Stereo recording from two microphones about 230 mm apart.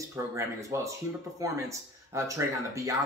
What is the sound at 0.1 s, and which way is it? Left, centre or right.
Speech, centre.